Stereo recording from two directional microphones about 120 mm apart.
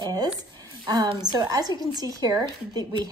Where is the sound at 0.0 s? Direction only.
30° right (ahead or behind).